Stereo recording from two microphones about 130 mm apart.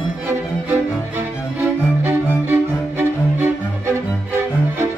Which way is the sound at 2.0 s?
15° right (ahead or behind).